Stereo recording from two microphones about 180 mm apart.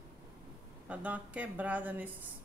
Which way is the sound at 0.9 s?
10° right (ahead or behind).